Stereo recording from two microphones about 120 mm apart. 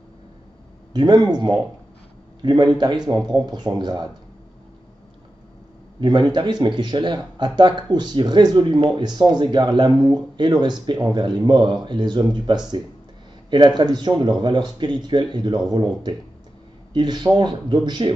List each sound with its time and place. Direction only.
0.9 s speech: 35° right (ahead or behind)
5.9 s speech: 40° right (ahead or behind)